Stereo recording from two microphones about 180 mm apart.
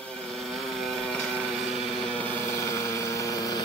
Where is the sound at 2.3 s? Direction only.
15° left (ahead or behind).